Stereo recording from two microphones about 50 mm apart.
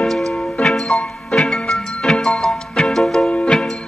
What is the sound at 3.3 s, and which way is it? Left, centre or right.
Music, left.